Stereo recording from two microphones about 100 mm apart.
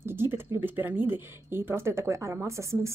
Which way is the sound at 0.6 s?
20° right (ahead or behind).